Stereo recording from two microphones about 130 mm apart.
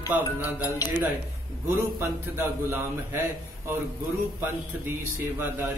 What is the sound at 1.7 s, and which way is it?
A man's voice, 20° right (ahead or behind).